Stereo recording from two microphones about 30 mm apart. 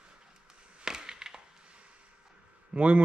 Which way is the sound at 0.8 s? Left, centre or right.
Right.